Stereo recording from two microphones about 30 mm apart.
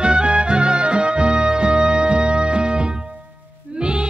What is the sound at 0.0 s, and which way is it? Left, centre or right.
Music, right.